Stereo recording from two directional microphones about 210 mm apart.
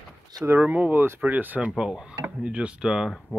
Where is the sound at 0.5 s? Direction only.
5° right (ahead or behind).